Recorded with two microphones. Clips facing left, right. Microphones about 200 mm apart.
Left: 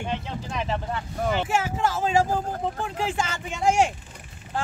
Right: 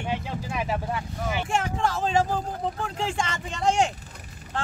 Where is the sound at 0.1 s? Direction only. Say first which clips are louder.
Even; 10° right (ahead or behind).